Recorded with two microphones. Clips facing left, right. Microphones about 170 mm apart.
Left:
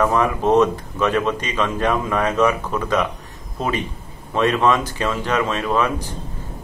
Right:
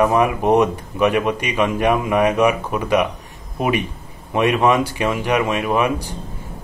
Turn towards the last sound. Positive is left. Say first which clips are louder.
# right 2 dB
turn(degrees=-15)  # may be behind; listen again after turning